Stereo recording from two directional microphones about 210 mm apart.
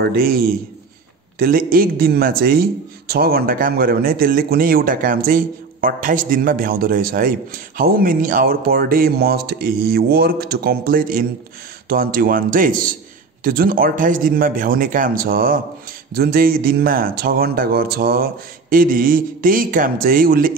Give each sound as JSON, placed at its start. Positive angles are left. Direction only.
{"t": 0.0, "sound": "a man's voice", "side_deg": -45}